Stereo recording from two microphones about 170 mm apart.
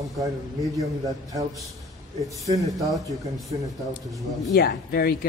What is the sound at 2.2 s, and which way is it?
Speech, 20° right (ahead or behind).